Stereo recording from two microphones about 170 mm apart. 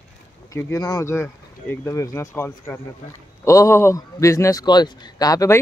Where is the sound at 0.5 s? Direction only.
20° left (ahead or behind).